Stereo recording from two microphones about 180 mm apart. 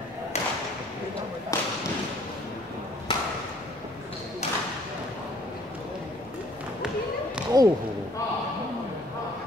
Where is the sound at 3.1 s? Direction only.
25° left (ahead or behind).